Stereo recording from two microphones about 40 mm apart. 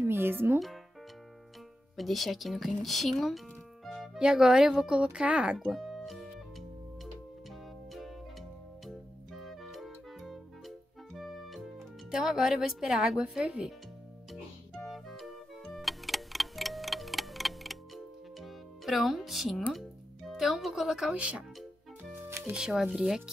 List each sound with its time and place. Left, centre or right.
0.0 s a child's voice: right
2.0 s speech: centre
4.2 s speech: centre
5.2 s speech: right
5.7 s music: centre
8.8 s music: centre
12.1 s speech: centre
13.4 s speech: right
14.8 s music: centre
20.6 s speech: centre
20.9 s speech: centre
21.2 s speech: right
22.6 s speech: centre